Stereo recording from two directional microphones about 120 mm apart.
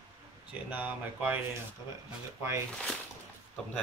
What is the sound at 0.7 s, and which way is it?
Speech, 15° right (ahead or behind).